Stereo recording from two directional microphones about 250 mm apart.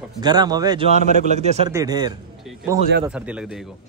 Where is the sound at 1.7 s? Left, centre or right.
Centre.